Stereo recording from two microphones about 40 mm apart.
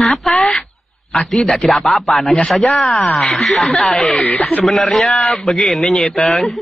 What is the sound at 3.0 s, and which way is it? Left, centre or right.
Speech, left.